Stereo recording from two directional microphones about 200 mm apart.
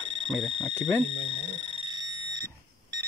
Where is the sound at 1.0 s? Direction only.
25° right (ahead or behind).